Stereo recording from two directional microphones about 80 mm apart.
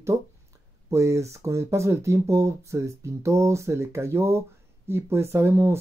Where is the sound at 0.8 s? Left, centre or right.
Right.